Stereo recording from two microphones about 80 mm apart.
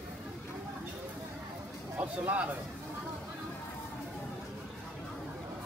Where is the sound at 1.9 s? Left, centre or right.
Right.